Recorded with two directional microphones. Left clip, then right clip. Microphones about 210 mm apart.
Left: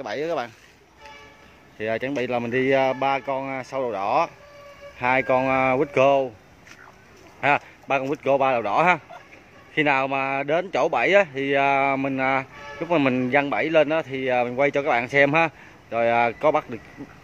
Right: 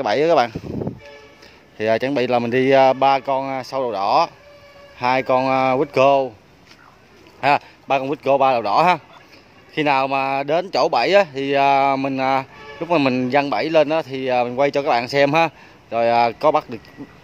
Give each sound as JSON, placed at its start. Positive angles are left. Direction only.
{"t": 0.0, "sound": "speech", "side_deg": -35}
{"t": 1.8, "sound": "speech", "side_deg": -25}
{"t": 7.3, "sound": "speech", "side_deg": -15}